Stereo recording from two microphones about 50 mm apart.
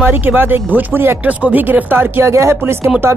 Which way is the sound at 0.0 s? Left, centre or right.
Right.